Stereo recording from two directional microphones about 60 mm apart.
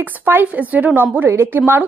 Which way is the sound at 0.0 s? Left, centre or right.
Right.